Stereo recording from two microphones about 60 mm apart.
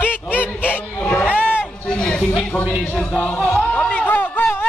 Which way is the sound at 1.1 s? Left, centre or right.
Left.